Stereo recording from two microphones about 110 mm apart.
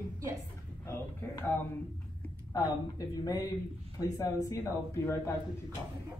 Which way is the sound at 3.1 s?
35° left (ahead or behind).